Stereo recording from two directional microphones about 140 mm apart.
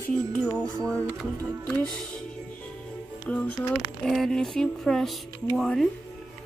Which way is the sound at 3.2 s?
10° left (ahead or behind).